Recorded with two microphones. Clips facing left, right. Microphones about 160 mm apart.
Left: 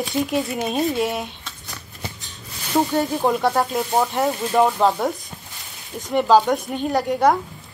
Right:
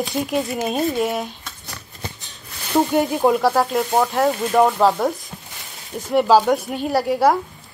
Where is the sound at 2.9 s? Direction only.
15° right (ahead or behind).